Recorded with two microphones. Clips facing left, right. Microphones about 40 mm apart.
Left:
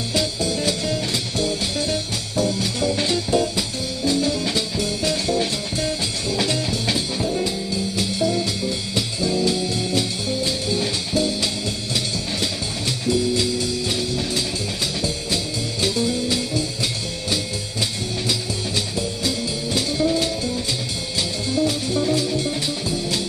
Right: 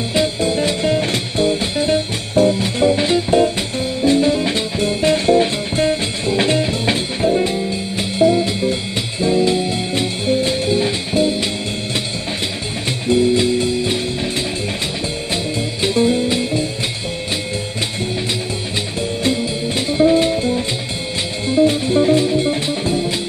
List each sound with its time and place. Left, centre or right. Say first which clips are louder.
0.1 s music: right 6 dB; right
13.0 s music: right 7 dB; right
15.8 s music: right 7 dB; right
18.9 s music: right 6 dB; right